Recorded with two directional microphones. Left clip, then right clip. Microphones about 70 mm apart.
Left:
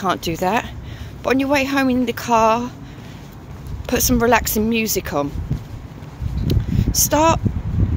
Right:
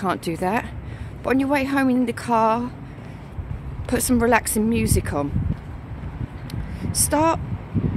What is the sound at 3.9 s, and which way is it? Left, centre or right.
Speech, centre.